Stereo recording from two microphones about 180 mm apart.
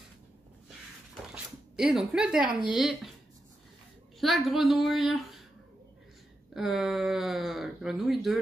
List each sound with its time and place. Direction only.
1.3 s speech: 5° right (ahead or behind)
4.2 s speech: centre (ahead or behind)
6.5 s speech: centre (ahead or behind)